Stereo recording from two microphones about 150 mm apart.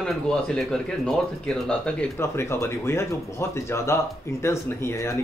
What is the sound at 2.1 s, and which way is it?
Speech, 15° left (ahead or behind).